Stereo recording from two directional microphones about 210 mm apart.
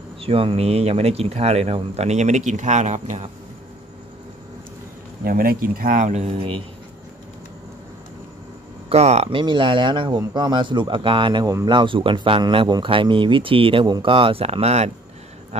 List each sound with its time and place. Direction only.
0.2 s speech: 25° right (ahead or behind)
5.2 s speech: 45° right (ahead or behind); by 6.6 s 30° right (ahead or behind)
8.8 s speech: 30° right (ahead or behind)